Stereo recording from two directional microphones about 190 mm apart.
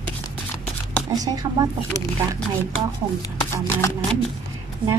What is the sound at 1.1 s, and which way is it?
Speech, 20° right (ahead or behind).